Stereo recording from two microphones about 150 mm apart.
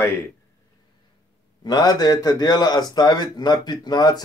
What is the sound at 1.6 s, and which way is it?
A man's voice, 25° left (ahead or behind).